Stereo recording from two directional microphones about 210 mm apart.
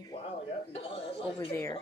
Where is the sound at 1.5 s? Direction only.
15° left (ahead or behind).